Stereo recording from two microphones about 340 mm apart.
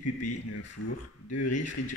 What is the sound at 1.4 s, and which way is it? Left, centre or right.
Speech, left.